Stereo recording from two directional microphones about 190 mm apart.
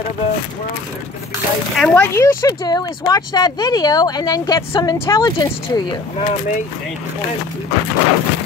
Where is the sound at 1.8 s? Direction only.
5° left (ahead or behind); by 6.3 s 25° left (ahead or behind).